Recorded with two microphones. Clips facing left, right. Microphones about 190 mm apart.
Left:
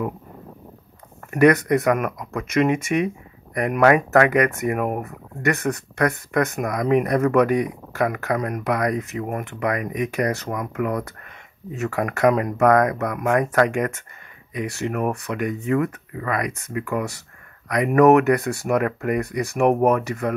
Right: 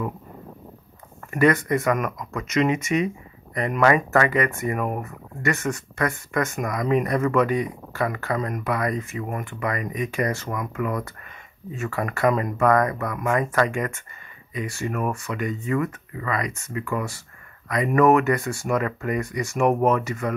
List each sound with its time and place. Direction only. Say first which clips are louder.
1.3 s speech: left 4 dB; 65° left (ahead or behind)
9.2 s speech: left 3 dB; 60° left (ahead or behind)
12.0 s speech: left 3 dB; 65° left (ahead or behind)